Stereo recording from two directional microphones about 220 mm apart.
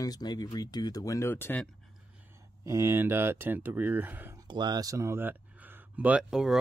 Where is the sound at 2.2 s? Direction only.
10° right (ahead or behind).